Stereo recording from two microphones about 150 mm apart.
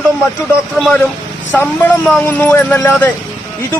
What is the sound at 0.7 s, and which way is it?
A man's voice, 5° left (ahead or behind).